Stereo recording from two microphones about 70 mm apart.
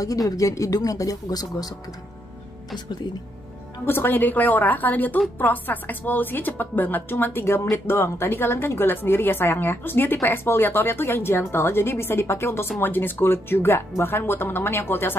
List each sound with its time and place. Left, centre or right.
0.4 s speech: left
3.8 s a woman's voice: left